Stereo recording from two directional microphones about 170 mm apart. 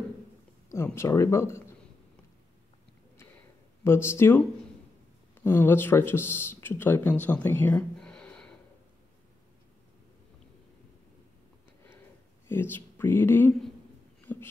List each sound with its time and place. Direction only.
0.7 s speech: 15° left (ahead or behind)
3.8 s speech: 15° left (ahead or behind)
5.4 s speech: 15° left (ahead or behind)
12.4 s speech: 10° left (ahead or behind)
14.2 s a sound: 10° left (ahead or behind)